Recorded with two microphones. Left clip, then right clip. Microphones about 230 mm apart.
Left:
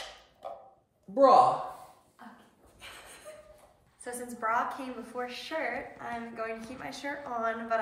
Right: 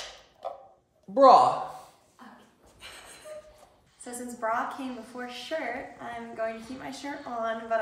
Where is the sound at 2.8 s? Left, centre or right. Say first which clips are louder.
Right 2 dB; centre.